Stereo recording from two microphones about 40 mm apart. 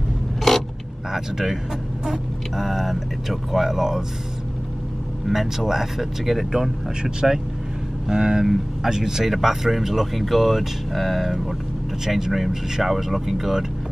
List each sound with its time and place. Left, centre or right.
0.4 s mechanisms: centre
1.1 s speech: centre
5.3 s speech: centre
6.5 s speech: centre